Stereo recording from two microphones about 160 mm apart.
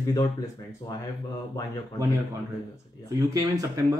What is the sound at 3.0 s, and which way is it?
Speech, 25° right (ahead or behind).